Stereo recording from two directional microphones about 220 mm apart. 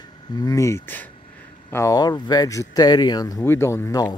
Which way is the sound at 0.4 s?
15° left (ahead or behind).